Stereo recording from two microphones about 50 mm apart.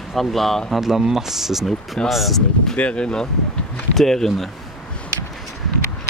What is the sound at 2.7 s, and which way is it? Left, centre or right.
Speech, left.